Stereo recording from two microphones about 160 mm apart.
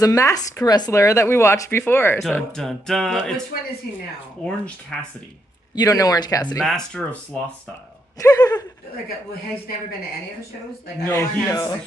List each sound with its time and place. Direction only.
0.0 s speech: 20° left (ahead or behind)
2.2 s speech: 5° left (ahead or behind)
4.5 s speech: 5° left (ahead or behind)
5.8 s speech: 25° left (ahead or behind)
6.6 s speech: 5° left (ahead or behind)
8.2 s speech: 20° left (ahead or behind)
11.1 s speech: 20° left (ahead or behind)